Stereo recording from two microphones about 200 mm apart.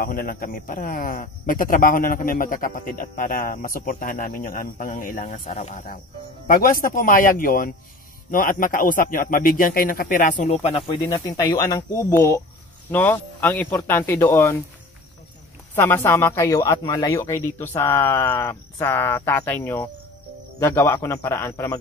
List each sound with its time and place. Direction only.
0.0 s speech: 45° left (ahead or behind)
11.0 s a man's voice: 20° left (ahead or behind)
15.7 s a man's voice: 10° left (ahead or behind)